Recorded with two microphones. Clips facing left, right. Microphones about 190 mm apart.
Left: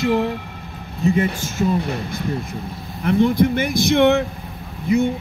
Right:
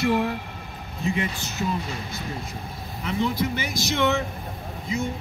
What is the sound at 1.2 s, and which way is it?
Speech, 55° left (ahead or behind).